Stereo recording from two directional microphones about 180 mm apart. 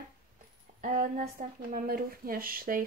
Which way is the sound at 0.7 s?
50° right (ahead or behind).